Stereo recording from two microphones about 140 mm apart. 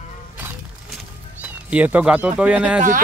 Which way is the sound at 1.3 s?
10° right (ahead or behind).